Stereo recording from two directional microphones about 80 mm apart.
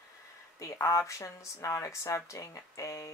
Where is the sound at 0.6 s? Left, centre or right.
Left.